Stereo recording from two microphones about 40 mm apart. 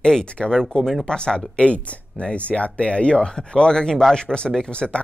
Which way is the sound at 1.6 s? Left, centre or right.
Left.